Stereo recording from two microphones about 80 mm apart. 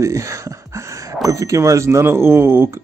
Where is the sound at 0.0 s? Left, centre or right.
Right.